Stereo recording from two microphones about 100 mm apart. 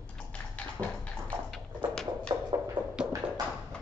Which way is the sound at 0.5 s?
10° left (ahead or behind).